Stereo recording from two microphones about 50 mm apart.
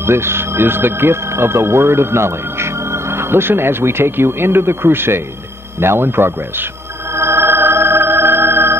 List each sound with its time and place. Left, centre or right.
0.0 s speech: right
7.2 s music: right